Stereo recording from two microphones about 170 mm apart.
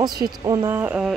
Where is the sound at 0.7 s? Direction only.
10° right (ahead or behind).